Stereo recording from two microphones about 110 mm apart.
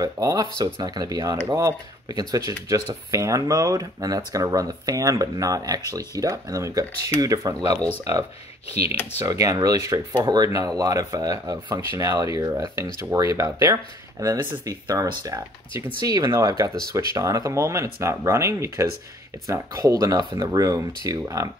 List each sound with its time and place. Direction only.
0.0 s speech: 35° right (ahead or behind)
8.6 s speech: 65° left (ahead or behind)
9.2 s speech: 30° right (ahead or behind)